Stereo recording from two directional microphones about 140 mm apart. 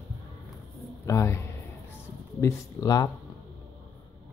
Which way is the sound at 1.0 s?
20° left (ahead or behind).